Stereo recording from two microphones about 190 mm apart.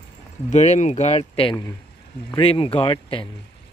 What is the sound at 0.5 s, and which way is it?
Speech, 40° left (ahead or behind).